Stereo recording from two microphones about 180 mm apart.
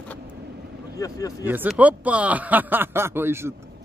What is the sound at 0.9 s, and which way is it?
Speech, 20° left (ahead or behind).